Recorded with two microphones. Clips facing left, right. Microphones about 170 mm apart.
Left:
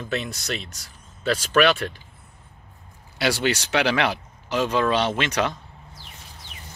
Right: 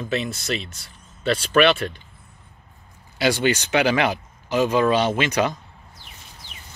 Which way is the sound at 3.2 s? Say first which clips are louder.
Right 3 dB; centre (ahead or behind).